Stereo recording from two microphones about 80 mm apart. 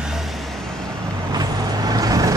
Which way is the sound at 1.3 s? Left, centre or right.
Right.